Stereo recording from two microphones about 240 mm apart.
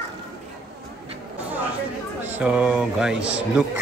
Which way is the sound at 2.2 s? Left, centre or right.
Centre.